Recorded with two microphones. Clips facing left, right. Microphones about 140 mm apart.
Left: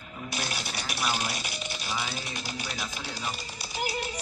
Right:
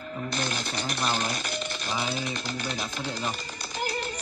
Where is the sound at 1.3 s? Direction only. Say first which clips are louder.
Right 4 dB; 50° right (ahead or behind).